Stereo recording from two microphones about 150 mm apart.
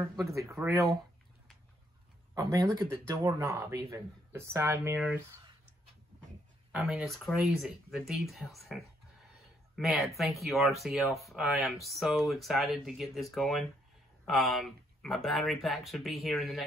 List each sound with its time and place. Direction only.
0.1 s speech: 20° right (ahead or behind)
2.3 s speech: 25° right (ahead or behind)
6.7 s speech: 5° right (ahead or behind)